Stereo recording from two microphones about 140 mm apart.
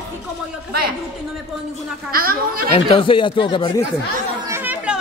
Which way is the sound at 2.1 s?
90° right.